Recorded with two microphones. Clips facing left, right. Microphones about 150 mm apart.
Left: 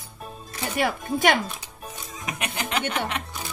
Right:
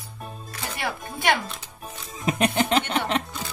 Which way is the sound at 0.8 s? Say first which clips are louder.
Left 6 dB; 50° left (ahead or behind).